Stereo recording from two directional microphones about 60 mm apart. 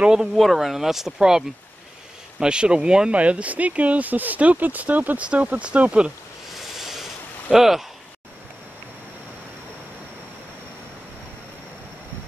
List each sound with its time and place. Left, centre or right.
0.0 s speech: centre
0.4 s speech: centre
2.4 s speech: centre
6.5 s a sound: centre
7.5 s speech: centre